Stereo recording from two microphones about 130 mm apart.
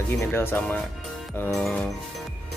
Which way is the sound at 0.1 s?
20° left (ahead or behind).